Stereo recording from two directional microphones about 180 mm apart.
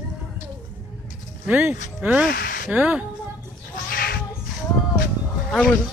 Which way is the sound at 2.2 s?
55° left (ahead or behind).